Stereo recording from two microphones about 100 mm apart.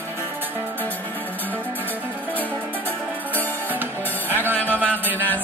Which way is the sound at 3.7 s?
20° right (ahead or behind).